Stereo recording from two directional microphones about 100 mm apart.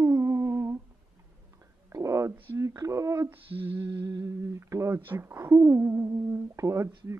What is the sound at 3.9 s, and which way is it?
Speech, 40° right (ahead or behind).